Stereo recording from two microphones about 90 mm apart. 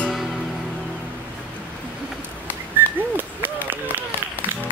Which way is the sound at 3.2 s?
20° right (ahead or behind).